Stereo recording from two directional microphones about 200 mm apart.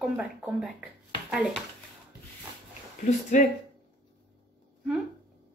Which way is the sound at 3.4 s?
40° left (ahead or behind).